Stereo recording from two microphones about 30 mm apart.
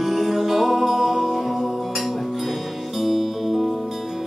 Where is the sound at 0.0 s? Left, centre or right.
Centre.